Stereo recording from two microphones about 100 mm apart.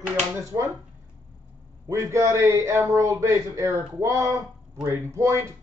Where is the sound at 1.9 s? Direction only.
30° right (ahead or behind).